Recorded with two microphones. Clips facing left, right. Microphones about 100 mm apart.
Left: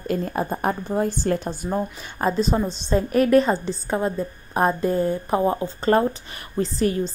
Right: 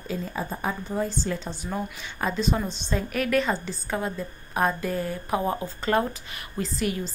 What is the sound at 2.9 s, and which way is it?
A woman's voice, 40° left (ahead or behind).